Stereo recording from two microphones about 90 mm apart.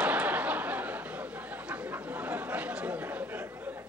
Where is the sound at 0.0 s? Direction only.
15° right (ahead or behind).